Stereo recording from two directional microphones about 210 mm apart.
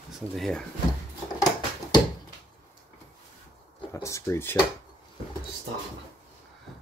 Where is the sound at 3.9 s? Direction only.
15° left (ahead or behind).